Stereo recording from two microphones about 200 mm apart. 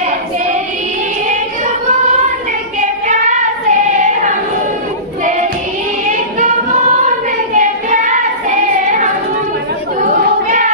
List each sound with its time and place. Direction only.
2.8 s child singing: 40° right (ahead or behind)
7.5 s child singing: 40° right (ahead or behind)